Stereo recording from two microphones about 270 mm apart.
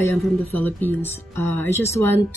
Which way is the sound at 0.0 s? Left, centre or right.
Centre.